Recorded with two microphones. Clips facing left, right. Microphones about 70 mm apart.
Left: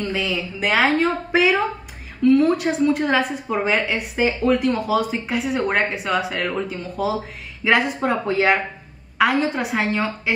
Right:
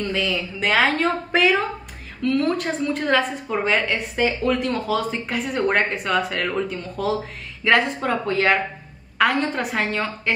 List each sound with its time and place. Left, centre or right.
0.0 s a woman's voice: centre